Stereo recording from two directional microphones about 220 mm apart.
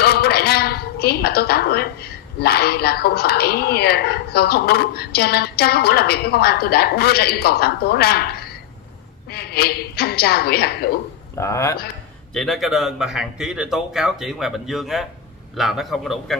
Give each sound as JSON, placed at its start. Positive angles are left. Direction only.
{"t": 0.0, "sound": "a woman's voice", "side_deg": 45}
{"t": 11.3, "sound": "speech", "side_deg": 15}
{"t": 12.4, "sound": "a man's voice", "side_deg": 0}